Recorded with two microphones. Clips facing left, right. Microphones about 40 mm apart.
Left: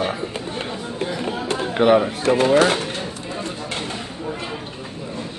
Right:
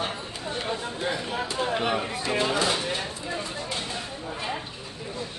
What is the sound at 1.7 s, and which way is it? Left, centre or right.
Speech, left.